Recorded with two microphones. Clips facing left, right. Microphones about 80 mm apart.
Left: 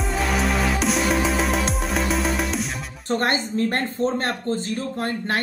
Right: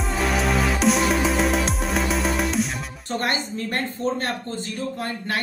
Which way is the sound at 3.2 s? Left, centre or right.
Left.